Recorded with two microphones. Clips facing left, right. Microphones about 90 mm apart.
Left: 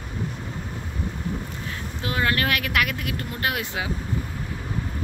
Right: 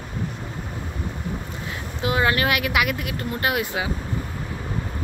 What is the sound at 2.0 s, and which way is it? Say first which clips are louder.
Speech: right 3 dB; 15° right (ahead or behind).